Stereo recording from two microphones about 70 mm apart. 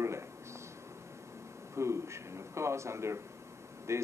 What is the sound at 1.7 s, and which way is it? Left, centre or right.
Speech, right.